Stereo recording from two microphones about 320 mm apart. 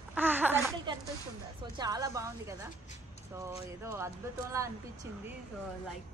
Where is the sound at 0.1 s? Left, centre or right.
Centre.